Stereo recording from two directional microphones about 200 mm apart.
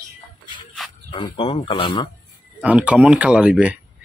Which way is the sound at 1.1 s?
25° left (ahead or behind).